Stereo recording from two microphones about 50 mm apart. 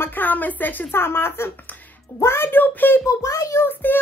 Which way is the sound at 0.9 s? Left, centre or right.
Left.